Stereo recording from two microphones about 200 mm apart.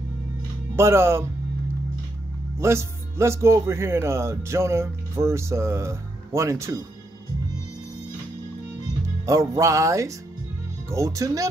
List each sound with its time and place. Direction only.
0.7 s speech: 10° right (ahead or behind)
2.6 s speech: 15° right (ahead or behind)
9.2 s speech: 15° right (ahead or behind)